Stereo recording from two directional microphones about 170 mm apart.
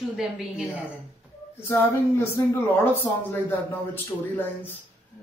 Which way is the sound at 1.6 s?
15° left (ahead or behind).